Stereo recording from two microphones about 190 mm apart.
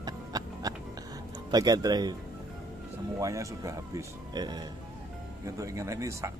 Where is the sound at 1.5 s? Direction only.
20° right (ahead or behind).